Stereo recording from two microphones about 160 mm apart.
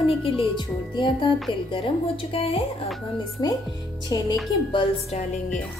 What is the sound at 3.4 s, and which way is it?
Speech, 25° left (ahead or behind).